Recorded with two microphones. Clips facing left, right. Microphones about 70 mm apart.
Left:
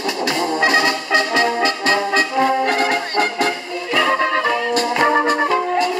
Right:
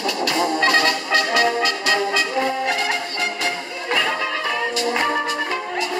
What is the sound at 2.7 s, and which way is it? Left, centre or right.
Music, left.